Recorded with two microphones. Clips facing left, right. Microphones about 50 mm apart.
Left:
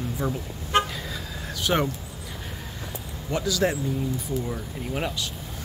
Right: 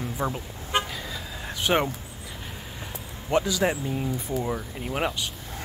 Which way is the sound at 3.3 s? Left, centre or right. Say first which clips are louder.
Right 1 dB; right.